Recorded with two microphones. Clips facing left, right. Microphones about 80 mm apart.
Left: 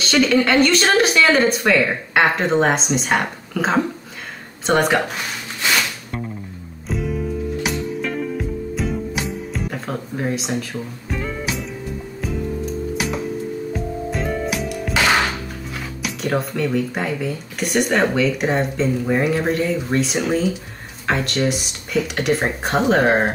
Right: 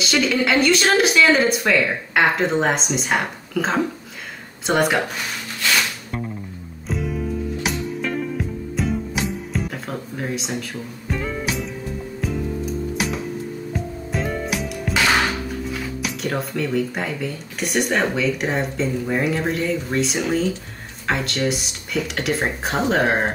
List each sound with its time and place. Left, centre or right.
0.0 s speech: centre
6.9 s music: centre
13.7 s music: centre
16.3 s speech: centre